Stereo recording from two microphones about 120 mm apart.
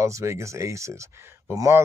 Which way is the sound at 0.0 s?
25° right (ahead or behind).